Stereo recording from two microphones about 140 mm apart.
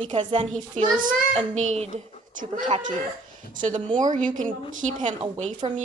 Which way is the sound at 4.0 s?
65° right (ahead or behind).